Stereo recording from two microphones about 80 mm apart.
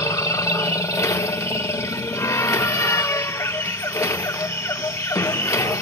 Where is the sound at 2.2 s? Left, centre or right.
Left.